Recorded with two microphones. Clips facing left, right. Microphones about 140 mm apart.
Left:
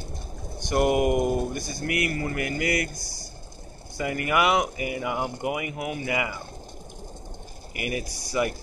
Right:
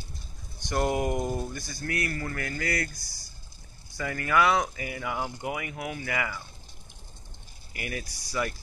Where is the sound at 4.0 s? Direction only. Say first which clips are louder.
Left 1 dB; 15° left (ahead or behind).